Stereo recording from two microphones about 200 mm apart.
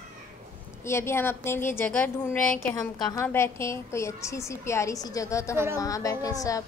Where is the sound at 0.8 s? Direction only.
15° left (ahead or behind).